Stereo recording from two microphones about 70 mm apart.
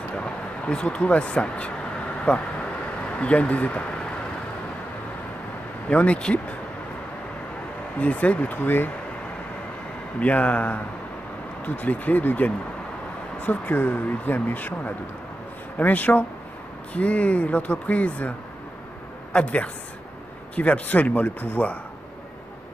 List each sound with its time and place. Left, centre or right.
0.1 s speech: centre
5.9 s speech: centre
8.0 s speech: centre
10.2 s speech: centre
19.3 s speech: centre